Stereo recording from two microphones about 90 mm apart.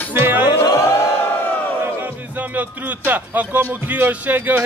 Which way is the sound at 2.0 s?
20° right (ahead or behind).